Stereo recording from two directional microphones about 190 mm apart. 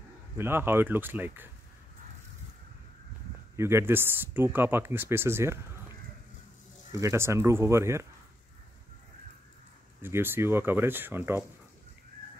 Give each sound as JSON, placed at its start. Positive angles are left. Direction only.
{"t": 0.4, "sound": "speech", "side_deg": -10}
{"t": 3.5, "sound": "speech", "side_deg": -15}
{"t": 6.9, "sound": "speech", "side_deg": -15}
{"t": 10.0, "sound": "speech", "side_deg": -10}